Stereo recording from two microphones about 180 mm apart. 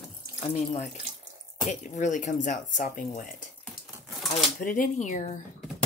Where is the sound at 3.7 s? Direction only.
Centre (ahead or behind).